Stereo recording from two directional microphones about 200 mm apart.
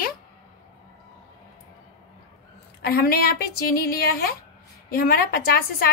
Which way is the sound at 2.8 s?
50° left (ahead or behind).